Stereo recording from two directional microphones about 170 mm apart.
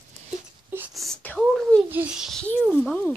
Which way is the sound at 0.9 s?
5° left (ahead or behind).